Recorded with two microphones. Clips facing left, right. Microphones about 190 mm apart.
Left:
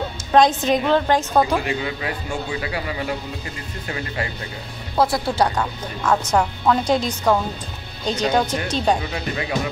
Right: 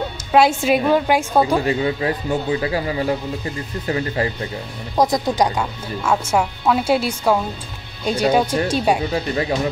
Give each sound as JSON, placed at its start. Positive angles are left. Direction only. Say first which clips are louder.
{"t": 0.3, "sound": "speech", "louder": "right 1 dB", "side_deg": -10}
{"t": 1.6, "sound": "speech", "louder": "right 6 dB", "side_deg": -35}
{"t": 4.9, "sound": "speech", "louder": "right 2 dB", "side_deg": -15}
{"t": 9.1, "sound": "speech", "louder": "right 5 dB", "side_deg": -30}